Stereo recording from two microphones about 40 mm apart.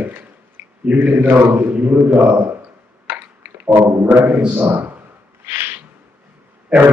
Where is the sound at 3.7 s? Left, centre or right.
Right.